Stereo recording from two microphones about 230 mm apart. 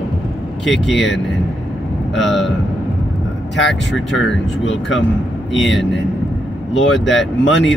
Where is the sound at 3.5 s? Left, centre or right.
Left.